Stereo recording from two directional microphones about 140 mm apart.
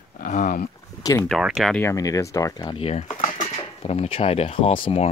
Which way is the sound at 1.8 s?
25° left (ahead or behind).